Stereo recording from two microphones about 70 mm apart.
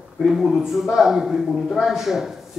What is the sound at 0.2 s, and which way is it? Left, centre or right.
Speech, centre.